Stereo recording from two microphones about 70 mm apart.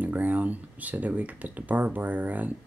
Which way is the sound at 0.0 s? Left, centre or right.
Right.